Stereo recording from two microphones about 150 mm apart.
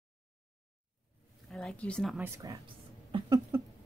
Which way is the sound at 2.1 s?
20° right (ahead or behind).